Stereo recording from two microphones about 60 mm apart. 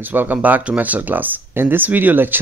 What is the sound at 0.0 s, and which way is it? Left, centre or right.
Speech, right.